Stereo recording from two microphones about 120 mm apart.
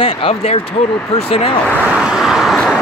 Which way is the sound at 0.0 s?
55° left (ahead or behind).